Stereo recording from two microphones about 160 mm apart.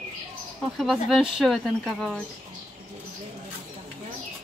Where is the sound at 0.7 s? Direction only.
Centre (ahead or behind).